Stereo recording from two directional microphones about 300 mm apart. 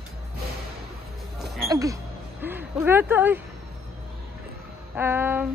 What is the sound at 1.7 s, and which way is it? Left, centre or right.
Speech, centre.